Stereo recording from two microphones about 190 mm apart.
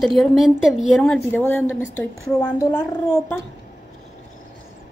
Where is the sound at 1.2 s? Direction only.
10° left (ahead or behind).